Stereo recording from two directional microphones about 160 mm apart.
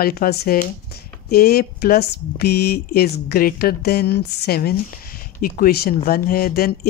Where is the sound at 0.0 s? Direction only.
70° left (ahead or behind).